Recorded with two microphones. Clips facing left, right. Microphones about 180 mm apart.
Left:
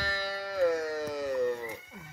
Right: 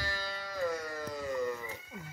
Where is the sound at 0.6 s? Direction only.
75° left (ahead or behind).